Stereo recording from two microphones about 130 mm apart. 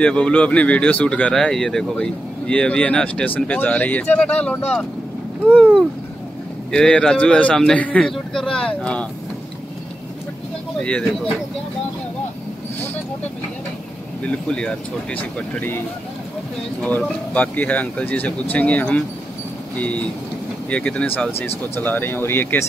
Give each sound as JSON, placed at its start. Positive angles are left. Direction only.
{"t": 0.0, "sound": "speech", "side_deg": 10}
{"t": 6.7, "sound": "speech", "side_deg": 5}
{"t": 10.8, "sound": "speech", "side_deg": 10}
{"t": 14.2, "sound": "speech", "side_deg": 10}
{"t": 16.8, "sound": "speech", "side_deg": 10}